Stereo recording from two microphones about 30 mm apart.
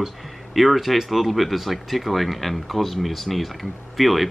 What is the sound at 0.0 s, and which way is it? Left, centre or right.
Speech, centre.